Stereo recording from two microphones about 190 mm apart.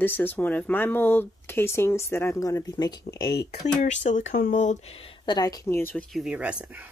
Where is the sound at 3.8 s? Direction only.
40° left (ahead or behind).